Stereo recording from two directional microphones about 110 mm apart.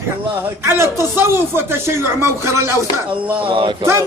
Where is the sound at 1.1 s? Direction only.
20° right (ahead or behind).